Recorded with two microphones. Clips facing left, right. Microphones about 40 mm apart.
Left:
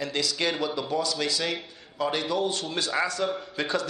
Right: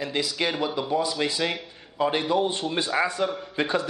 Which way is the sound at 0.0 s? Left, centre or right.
Centre.